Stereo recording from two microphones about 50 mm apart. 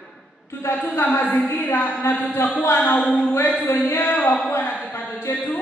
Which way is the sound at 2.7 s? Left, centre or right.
Left.